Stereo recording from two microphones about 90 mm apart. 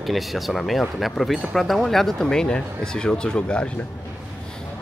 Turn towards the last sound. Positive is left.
turn(degrees=15)  # may be behind; listen again after turning